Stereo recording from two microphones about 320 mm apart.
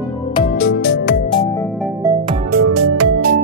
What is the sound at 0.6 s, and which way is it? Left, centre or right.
Music, left.